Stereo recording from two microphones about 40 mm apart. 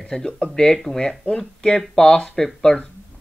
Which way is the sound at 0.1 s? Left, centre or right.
Centre.